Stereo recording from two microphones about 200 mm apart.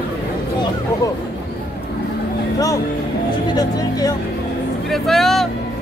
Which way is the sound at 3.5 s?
20° left (ahead or behind).